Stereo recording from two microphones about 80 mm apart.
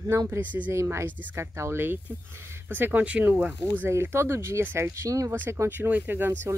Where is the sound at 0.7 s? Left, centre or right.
Right.